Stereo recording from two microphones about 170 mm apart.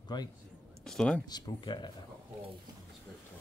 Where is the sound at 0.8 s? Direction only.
5° left (ahead or behind).